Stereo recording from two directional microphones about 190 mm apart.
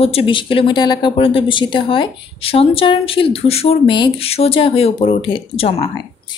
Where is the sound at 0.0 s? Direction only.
30° left (ahead or behind).